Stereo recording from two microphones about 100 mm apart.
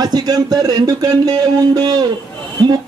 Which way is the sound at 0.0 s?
40° right (ahead or behind).